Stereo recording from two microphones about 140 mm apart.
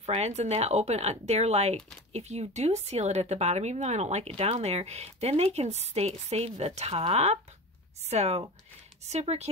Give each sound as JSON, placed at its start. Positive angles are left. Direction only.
{"t": 0.0, "sound": "speech", "side_deg": -50}